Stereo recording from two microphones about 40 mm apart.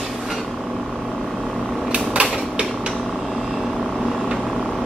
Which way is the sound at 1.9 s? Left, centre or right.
Right.